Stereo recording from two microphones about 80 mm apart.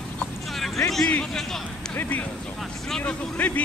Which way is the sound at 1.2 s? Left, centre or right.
Centre.